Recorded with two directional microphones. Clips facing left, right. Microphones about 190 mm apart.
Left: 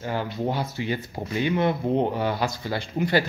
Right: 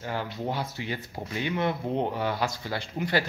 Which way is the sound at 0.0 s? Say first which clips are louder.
Left 5 dB; 25° left (ahead or behind).